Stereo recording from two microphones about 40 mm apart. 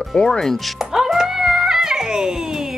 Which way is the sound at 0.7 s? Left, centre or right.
Centre.